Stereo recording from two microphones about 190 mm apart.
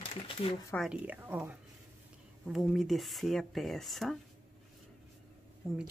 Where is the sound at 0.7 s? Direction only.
5° right (ahead or behind).